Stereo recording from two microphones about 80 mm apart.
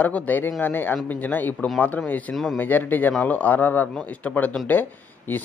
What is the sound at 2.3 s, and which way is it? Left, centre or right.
Speech, centre.